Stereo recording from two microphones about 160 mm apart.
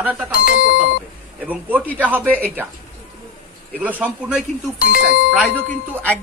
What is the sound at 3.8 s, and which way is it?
Speech, 10° right (ahead or behind).